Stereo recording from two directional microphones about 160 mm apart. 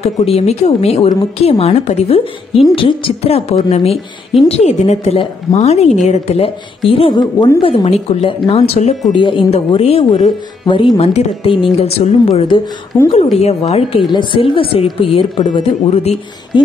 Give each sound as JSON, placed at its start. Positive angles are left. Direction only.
{"t": 0.0, "sound": "a woman's voice", "side_deg": 40}
{"t": 7.8, "sound": "a woman's voice", "side_deg": 40}
{"t": 12.9, "sound": "a woman's voice", "side_deg": 15}
{"t": 13.4, "sound": "a woman's voice", "side_deg": 40}